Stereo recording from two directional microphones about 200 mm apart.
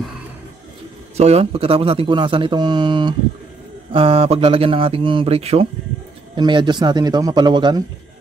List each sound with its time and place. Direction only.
1.1 s speech: 30° right (ahead or behind)